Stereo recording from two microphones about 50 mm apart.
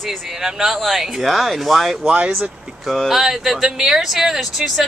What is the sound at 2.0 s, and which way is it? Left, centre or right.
Speech, right.